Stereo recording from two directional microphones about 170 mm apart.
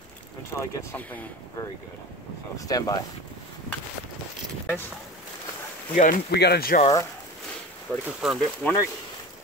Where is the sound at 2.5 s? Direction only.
20° left (ahead or behind).